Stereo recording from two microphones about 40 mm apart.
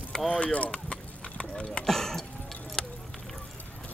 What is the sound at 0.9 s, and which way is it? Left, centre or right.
Clip-clop, left.